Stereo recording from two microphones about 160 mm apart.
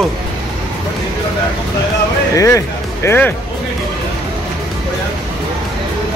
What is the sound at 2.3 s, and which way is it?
Speech, 20° left (ahead or behind).